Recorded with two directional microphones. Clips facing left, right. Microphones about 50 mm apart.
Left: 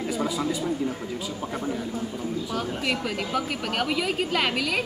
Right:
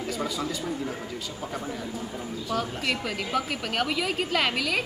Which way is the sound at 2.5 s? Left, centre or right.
Centre.